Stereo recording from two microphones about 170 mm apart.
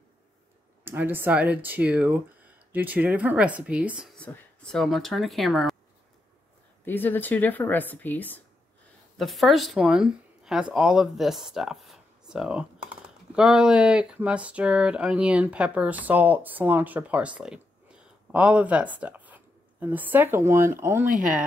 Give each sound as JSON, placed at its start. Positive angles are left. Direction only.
{"t": 0.8, "sound": "speech", "side_deg": -10}
{"t": 4.2, "sound": "speech", "side_deg": 5}
{"t": 6.8, "sound": "speech", "side_deg": 10}
{"t": 21.1, "sound": "speech", "side_deg": -50}